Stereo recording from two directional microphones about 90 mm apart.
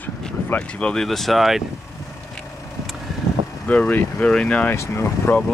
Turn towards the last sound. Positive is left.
turn(degrees=30)  # may be behind; listen again after turning